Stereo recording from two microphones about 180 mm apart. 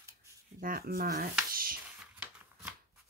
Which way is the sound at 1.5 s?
55° right (ahead or behind).